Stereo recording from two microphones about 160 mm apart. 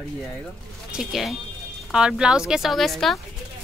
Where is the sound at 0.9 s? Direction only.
Centre (ahead or behind).